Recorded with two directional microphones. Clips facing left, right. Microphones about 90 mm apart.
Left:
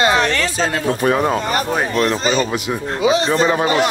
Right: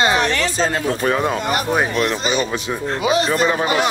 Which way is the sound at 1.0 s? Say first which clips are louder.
Left 4 dB; 50° left (ahead or behind).